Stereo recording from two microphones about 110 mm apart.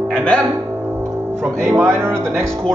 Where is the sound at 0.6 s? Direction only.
20° right (ahead or behind).